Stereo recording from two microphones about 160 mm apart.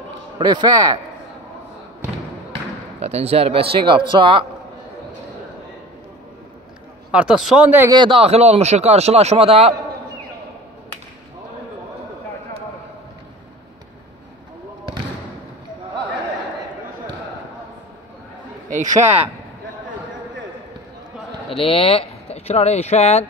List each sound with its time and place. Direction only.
0.4 s a man's voice: 25° right (ahead or behind)
3.0 s a man's voice: 40° right (ahead or behind)
7.1 s speech: 5° right (ahead or behind)
7.9 s a man's voice: 30° right (ahead or behind)
18.7 s a man's voice: 50° right (ahead or behind)
21.5 s speech: 35° left (ahead or behind)